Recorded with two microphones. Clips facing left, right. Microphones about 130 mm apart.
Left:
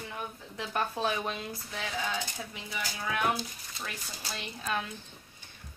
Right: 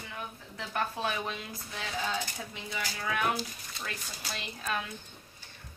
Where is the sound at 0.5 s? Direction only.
20° left (ahead or behind).